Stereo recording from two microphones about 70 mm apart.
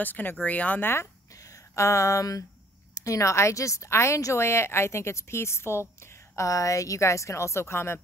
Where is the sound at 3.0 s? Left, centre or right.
Left.